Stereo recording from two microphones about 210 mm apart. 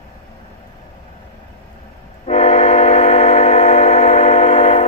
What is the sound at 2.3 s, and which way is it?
Train, 30° left (ahead or behind).